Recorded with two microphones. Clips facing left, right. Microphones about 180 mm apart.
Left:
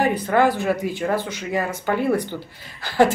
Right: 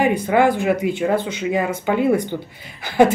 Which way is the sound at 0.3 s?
15° right (ahead or behind).